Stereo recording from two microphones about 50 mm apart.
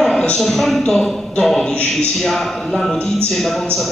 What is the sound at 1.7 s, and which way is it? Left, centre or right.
Speech, left.